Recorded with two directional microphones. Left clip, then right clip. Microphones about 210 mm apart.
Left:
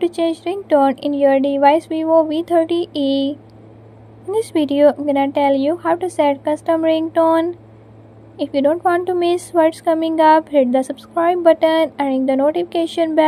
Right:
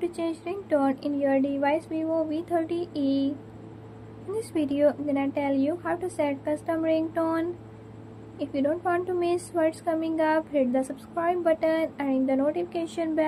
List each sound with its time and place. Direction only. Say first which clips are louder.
0.0 s a woman's voice: left 11 dB; 35° left (ahead or behind)
4.4 s a woman's voice: left 11 dB; 35° left (ahead or behind)